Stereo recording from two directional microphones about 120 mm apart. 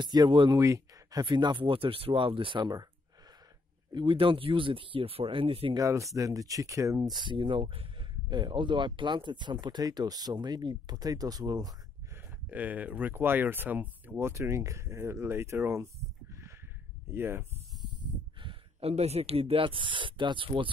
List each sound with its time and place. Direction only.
0.0 s speech: 35° right (ahead or behind)
0.6 s a sound: 25° right (ahead or behind)
1.2 s speech: 40° right (ahead or behind)
3.9 s speech: 45° right (ahead or behind)
5.8 s speech: 25° right (ahead or behind)
7.2 s speech: 40° right (ahead or behind)
12.4 s speech: 15° right (ahead or behind)
18.4 s speech: 50° right (ahead or behind)